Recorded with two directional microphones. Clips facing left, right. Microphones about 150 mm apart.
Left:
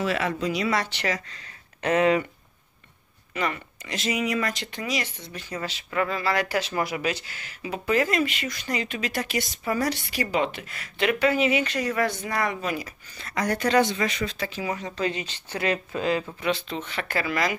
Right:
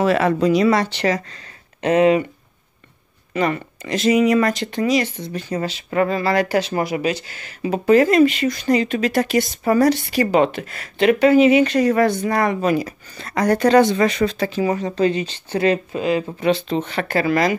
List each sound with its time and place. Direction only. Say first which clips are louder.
0.0 s speech: right 9 dB; 45° right (ahead or behind)
1.8 s speech: right 6 dB; 25° right (ahead or behind)
3.3 s speech: right 8 dB; 40° right (ahead or behind)
7.6 s speech: right 10 dB; 40° right (ahead or behind)
15.9 s speech: right 5 dB; 20° right (ahead or behind)
16.3 s speech: right 8 dB; 30° right (ahead or behind)